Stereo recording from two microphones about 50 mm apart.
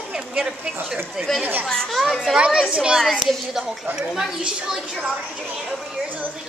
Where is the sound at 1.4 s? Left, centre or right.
Right.